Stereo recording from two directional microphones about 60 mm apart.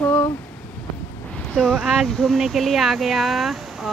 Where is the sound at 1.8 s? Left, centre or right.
Centre.